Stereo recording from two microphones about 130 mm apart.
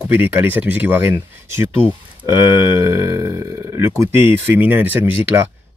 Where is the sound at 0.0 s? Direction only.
10° right (ahead or behind).